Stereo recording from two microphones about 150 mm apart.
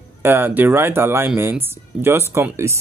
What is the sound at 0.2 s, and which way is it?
Speech, 15° right (ahead or behind).